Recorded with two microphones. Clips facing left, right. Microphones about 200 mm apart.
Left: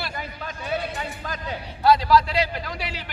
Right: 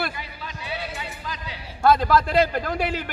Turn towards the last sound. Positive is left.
turn(degrees=-50)  # may be behind; listen again after turning